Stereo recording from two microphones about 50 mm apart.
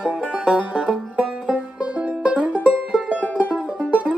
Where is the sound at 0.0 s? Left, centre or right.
Centre.